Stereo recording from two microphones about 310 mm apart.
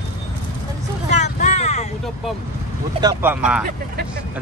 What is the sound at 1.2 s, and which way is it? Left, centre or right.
Vehicle, left.